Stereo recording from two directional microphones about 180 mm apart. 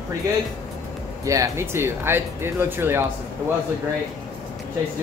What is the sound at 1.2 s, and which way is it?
Speech, 15° right (ahead or behind).